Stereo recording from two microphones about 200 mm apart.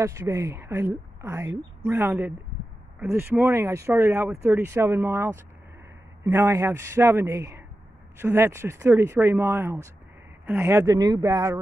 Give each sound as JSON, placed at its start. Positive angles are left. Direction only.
{"t": 0.0, "sound": "speech", "side_deg": -15}